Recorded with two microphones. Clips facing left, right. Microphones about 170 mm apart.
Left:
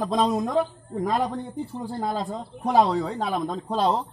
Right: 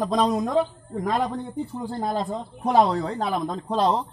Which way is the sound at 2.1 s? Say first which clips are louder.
Right 2 dB; centre (ahead or behind).